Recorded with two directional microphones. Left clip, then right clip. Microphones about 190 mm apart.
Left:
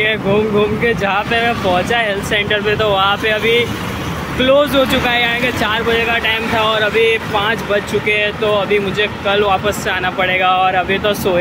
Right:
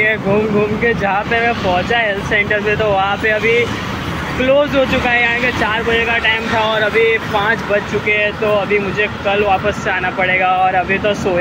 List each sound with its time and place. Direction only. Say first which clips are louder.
0.8 s speech: even; 10° left (ahead or behind)
6.7 s speech: even; 5° left (ahead or behind)
8.1 s speech: right 1 dB; 15° left (ahead or behind)